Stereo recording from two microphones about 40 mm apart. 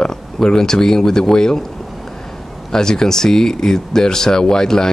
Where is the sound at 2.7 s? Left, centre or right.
Centre.